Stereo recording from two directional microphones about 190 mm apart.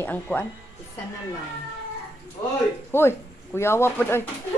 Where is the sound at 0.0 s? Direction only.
10° left (ahead or behind).